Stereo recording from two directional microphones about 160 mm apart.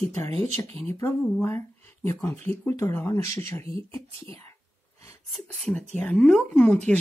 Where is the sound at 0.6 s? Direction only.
15° left (ahead or behind).